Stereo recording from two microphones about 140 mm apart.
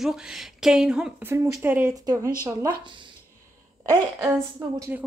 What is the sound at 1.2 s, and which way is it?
Speech, 20° right (ahead or behind).